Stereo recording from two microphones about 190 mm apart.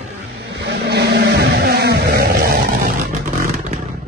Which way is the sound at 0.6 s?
60° right (ahead or behind).